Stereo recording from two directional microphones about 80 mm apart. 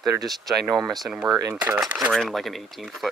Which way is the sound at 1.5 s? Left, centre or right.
Centre.